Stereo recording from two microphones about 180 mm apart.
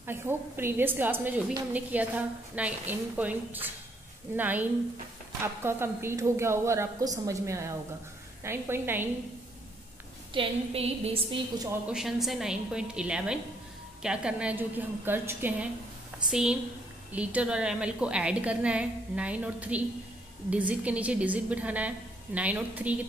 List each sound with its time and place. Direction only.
0.0 s a woman's voice: 10° right (ahead or behind)
10.3 s a woman's voice: 35° right (ahead or behind)
11.9 s a woman's voice: centre (ahead or behind)